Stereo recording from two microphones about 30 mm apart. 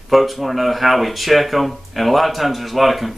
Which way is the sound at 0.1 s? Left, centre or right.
Centre.